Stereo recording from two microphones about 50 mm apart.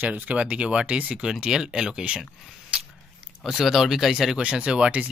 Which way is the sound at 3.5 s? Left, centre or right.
Centre.